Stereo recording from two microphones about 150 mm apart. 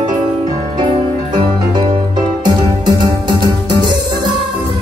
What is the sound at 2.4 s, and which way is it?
Music, 30° right (ahead or behind).